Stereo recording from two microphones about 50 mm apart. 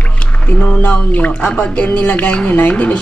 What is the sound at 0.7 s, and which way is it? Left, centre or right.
A woman's voice, left.